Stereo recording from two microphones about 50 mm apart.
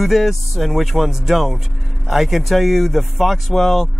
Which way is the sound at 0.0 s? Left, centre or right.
Centre.